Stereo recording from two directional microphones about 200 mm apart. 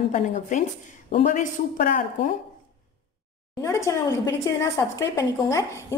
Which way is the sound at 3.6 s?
15° left (ahead or behind).